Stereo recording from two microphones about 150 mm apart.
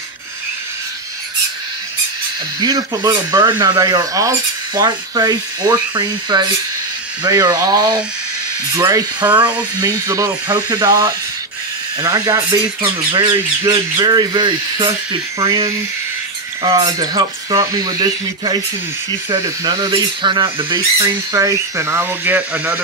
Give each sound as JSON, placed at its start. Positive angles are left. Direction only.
{"t": 2.6, "sound": "speech", "side_deg": -25}